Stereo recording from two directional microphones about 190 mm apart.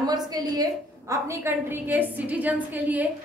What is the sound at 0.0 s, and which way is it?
A woman's voice, 20° right (ahead or behind).